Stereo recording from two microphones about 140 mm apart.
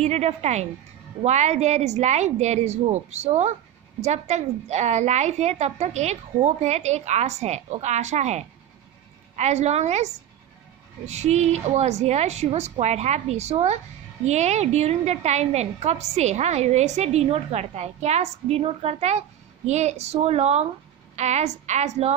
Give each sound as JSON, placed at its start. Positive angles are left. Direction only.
{"t": 0.0, "sound": "a woman's voice", "side_deg": -50}